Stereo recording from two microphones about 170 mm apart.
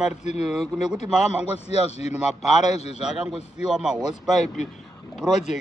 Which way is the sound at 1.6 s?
40° left (ahead or behind).